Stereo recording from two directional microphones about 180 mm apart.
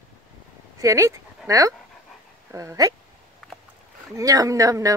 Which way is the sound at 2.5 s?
20° right (ahead or behind).